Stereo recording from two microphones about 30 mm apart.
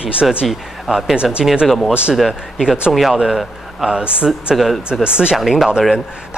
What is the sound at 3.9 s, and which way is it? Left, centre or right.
Speech, right.